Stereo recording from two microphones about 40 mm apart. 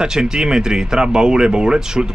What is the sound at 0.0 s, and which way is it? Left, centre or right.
Speech, centre.